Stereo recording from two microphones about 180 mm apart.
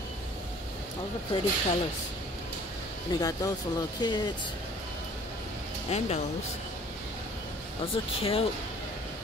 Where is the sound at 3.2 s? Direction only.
20° left (ahead or behind).